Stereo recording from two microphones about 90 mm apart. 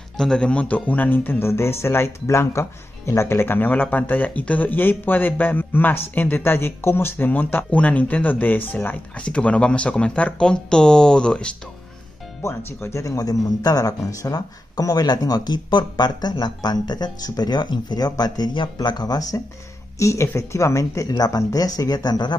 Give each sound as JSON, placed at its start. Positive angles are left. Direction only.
{"t": 0.2, "sound": "speech", "side_deg": 10}
{"t": 12.4, "sound": "speech", "side_deg": 30}